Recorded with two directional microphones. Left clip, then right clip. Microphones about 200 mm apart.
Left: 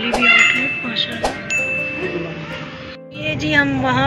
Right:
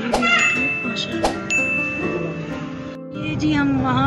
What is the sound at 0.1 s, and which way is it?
Music, centre (ahead or behind).